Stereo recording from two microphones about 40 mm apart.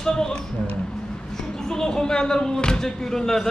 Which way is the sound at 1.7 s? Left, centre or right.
Centre.